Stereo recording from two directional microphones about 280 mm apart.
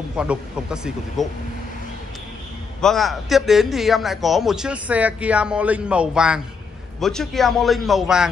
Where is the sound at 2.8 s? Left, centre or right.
Centre.